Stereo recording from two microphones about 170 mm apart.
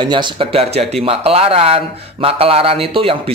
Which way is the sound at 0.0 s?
25° right (ahead or behind).